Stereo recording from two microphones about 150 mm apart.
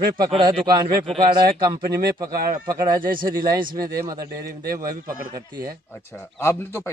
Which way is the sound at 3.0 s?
70° right (ahead or behind).